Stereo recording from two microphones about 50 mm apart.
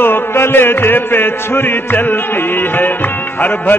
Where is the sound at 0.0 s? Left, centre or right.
Left.